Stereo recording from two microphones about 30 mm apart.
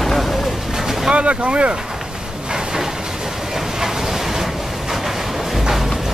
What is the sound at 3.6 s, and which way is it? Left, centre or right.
Vehicle, centre.